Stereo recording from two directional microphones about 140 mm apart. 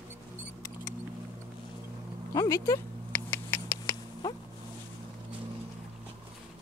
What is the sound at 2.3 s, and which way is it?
Cat, 20° left (ahead or behind).